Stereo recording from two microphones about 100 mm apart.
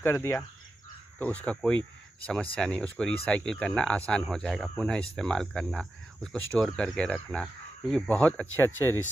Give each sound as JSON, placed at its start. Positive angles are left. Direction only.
{"t": 0.0, "sound": "speech", "side_deg": 25}
{"t": 1.2, "sound": "speech", "side_deg": 15}